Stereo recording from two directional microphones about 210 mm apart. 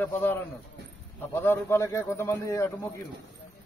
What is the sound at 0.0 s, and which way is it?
A man's voice, 10° left (ahead or behind).